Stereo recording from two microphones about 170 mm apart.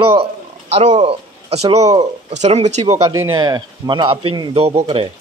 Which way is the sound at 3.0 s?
25° right (ahead or behind).